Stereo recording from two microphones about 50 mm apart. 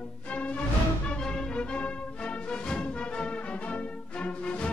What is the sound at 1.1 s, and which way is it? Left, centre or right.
Music, centre.